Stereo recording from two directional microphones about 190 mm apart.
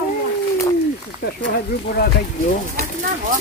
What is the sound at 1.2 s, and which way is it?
Speech, 55° left (ahead or behind).